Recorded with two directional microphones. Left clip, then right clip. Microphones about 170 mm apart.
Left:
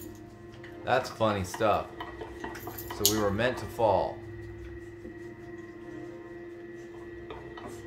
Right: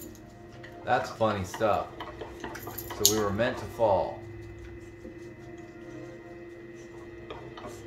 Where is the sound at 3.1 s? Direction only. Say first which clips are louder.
Left 1 dB; 35° left (ahead or behind).